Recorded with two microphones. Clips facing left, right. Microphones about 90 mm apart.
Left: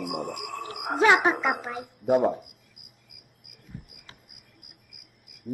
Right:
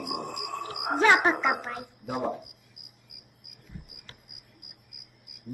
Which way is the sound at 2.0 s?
45° left (ahead or behind).